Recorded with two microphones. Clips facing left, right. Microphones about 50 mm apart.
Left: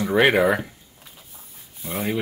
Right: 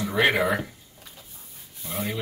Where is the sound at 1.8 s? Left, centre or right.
Centre.